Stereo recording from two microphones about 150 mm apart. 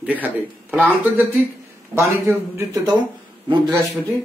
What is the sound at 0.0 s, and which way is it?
Speech, 10° right (ahead or behind).